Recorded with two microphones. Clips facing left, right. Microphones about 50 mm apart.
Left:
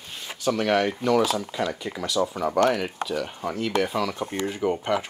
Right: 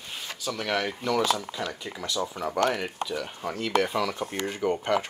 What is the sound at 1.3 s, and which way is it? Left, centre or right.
Speech, left.